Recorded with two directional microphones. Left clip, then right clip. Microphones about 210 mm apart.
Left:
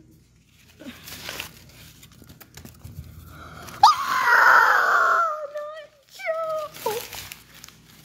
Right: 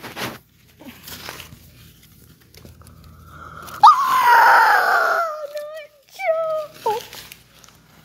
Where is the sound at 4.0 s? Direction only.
10° right (ahead or behind).